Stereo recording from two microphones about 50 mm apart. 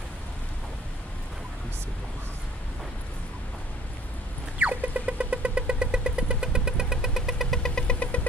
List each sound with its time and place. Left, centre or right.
4.6 s vehicle: right; by 7.4 s centre
7.5 s vehicle: centre